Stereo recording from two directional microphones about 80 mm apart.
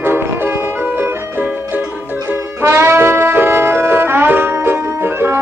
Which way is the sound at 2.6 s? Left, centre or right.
Right.